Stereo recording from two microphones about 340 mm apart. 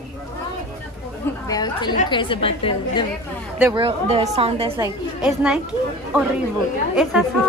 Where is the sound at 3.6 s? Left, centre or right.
Centre.